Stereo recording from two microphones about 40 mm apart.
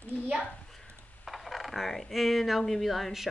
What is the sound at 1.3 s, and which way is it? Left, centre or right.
Speech, centre.